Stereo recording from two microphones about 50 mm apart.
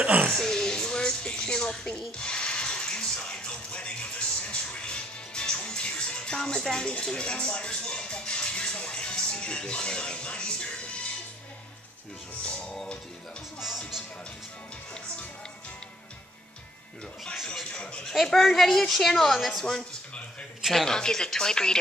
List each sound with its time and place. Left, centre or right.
0.0 s speech: right
0.3 s music: centre
6.6 s speech: centre
17.6 s speech: centre
18.0 s a woman's voice: centre
20.7 s a woman's voice: centre